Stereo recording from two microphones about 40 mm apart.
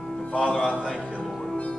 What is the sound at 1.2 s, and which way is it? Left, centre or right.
Music, centre.